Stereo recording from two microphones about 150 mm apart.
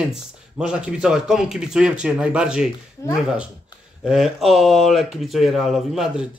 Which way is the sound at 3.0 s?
20° left (ahead or behind).